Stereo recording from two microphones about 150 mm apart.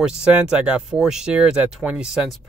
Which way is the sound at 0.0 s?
5° right (ahead or behind).